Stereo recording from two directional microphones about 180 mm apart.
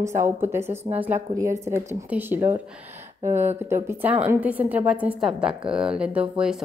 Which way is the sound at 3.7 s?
10° right (ahead or behind).